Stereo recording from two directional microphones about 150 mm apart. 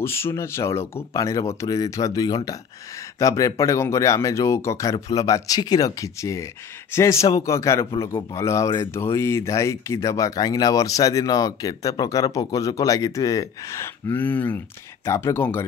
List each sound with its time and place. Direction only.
0.0 s speech: 15° left (ahead or behind)